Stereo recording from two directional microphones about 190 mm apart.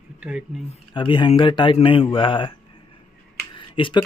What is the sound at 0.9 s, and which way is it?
Speech, 25° left (ahead or behind).